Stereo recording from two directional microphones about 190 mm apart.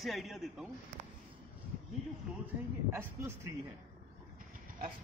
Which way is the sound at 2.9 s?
15° right (ahead or behind).